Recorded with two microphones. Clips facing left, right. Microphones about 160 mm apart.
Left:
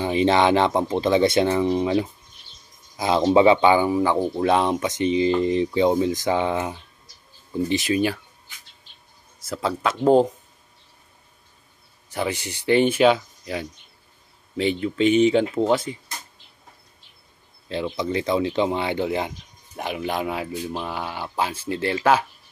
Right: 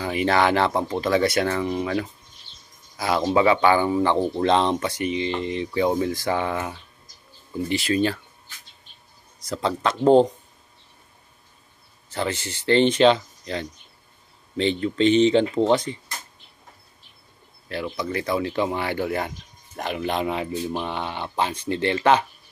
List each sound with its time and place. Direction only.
0.0 s speech: 25° left (ahead or behind)
4.9 s speech: 30° left (ahead or behind)
5.8 s speech: 20° left (ahead or behind)
9.5 s speech: 5° left (ahead or behind)
12.1 s speech: 15° left (ahead or behind)
17.6 s speech: 20° left (ahead or behind); by 22.2 s 5° left (ahead or behind)